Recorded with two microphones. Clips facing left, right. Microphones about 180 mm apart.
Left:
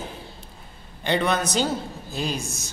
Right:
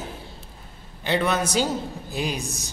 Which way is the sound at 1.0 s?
5° right (ahead or behind).